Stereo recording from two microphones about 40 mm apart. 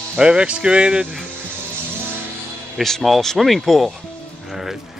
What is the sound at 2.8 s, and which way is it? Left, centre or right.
Speech, centre.